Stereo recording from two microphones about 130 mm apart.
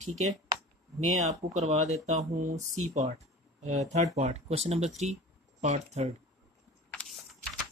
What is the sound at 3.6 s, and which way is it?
Speech, 60° right (ahead or behind).